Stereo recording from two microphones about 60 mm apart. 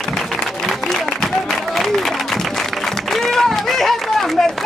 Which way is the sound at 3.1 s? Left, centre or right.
Centre.